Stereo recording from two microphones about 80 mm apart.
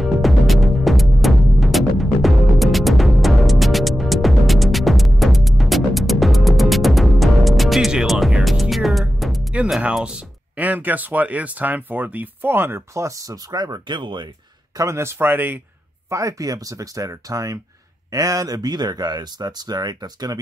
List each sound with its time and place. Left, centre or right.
0.0 s music: centre
9.9 s speech: centre; by 14.2 s right
14.8 s speech: right
16.1 s speech: right